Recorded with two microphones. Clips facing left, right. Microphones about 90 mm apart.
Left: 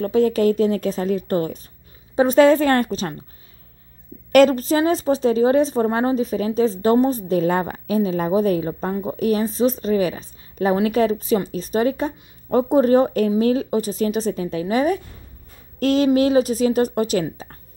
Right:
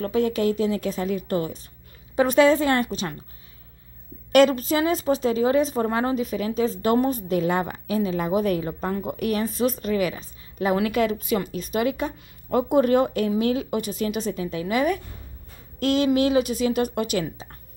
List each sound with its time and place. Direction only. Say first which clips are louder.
0.0 s a woman's voice: left 5 dB; 35° left (ahead or behind)
4.3 s a woman's voice: left 3 dB; 40° left (ahead or behind)